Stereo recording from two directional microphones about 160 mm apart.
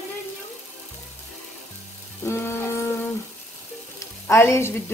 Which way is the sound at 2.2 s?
15° left (ahead or behind).